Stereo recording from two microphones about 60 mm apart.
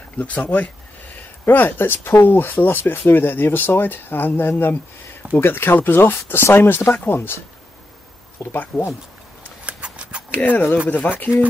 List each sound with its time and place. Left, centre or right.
0.2 s speech: left
8.4 s speech: left
9.7 s a sound: right
10.3 s speech: left